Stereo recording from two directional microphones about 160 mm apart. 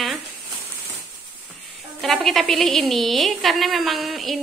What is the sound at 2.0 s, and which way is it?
A woman's voice, centre (ahead or behind).